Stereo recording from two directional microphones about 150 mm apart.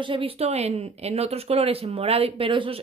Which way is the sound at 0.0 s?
35° right (ahead or behind).